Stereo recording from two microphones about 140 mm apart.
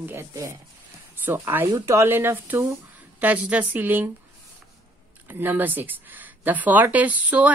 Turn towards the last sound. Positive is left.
turn(degrees=-10)  # may be behind; listen again after turning